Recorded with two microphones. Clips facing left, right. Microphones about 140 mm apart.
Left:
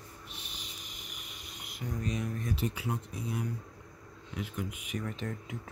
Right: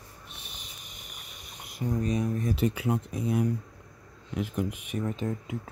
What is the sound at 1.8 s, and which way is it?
Speech, 30° right (ahead or behind).